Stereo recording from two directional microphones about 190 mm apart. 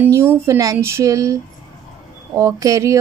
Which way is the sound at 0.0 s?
10° right (ahead or behind).